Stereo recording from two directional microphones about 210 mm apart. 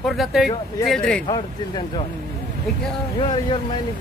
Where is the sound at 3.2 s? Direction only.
25° left (ahead or behind).